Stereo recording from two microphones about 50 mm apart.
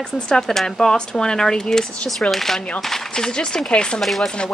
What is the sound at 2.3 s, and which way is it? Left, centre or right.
Speech, centre.